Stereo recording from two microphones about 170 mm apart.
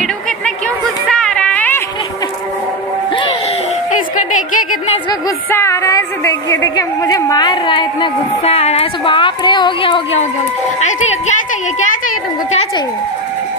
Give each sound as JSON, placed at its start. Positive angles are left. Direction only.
{"t": 1.0, "sound": "music", "side_deg": 5}
{"t": 5.5, "sound": "a woman's voice", "side_deg": 15}
{"t": 10.8, "sound": "a woman's voice", "side_deg": 45}